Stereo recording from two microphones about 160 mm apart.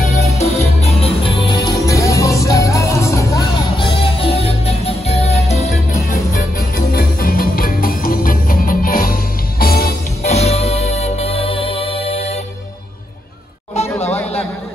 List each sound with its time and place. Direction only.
0.4 s music: 40° left (ahead or behind); by 3.4 s 20° left (ahead or behind)
3.7 s music: 35° left (ahead or behind)
5.9 s music: 60° left (ahead or behind)
10.2 s music: 40° left (ahead or behind)
13.8 s a sound: 15° left (ahead or behind)